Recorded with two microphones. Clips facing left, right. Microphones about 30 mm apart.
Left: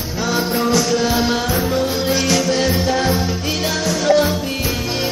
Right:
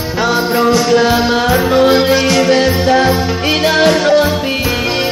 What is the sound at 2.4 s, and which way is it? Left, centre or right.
Music, right.